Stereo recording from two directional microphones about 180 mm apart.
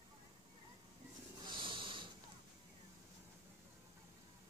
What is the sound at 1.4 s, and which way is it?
Snort, 25° right (ahead or behind).